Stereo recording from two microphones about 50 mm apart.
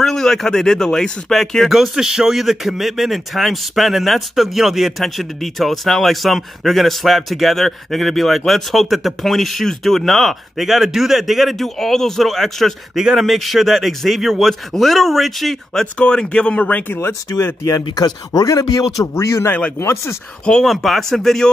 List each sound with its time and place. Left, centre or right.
0.0 s speech: centre
1.7 s speech: centre
12.9 s speech: centre
16.0 s speech: left
16.9 s speech: left
18.5 s a man's voice: left
19.8 s speech: left
20.6 s speech: centre